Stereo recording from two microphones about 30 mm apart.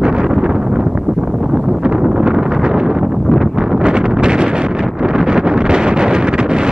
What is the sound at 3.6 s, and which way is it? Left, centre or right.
Wind noise, right.